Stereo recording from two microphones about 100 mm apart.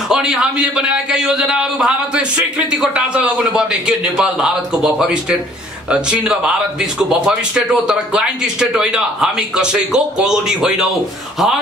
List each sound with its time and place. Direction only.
0.1 s a man's voice: 5° right (ahead or behind)